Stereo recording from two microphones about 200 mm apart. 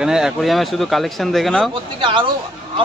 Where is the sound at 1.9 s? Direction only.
25° right (ahead or behind).